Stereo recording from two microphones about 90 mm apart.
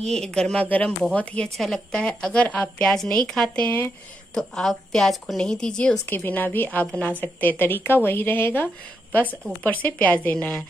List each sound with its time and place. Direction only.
0.1 s a woman's voice: 5° left (ahead or behind)
3.6 s a woman's voice: 25° left (ahead or behind)
4.3 s a woman's voice: 5° left (ahead or behind)
6.0 s a woman's voice: 20° left (ahead or behind)